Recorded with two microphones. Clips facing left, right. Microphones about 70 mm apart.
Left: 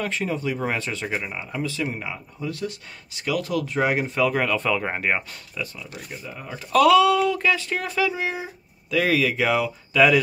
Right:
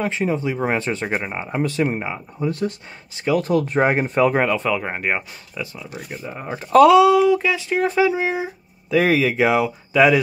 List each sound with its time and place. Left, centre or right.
0.0 s speech: right
4.6 s speech: centre
5.5 s speech: centre
6.2 s speech: right
7.1 s speech: centre